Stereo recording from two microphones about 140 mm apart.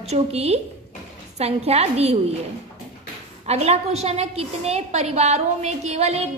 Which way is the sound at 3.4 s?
50° right (ahead or behind).